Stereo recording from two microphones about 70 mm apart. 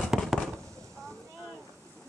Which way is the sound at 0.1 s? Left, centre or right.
Centre.